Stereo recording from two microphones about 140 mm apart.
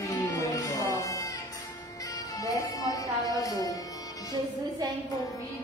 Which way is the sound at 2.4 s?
25° left (ahead or behind).